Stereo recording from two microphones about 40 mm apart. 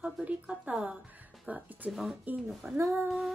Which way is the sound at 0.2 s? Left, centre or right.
Right.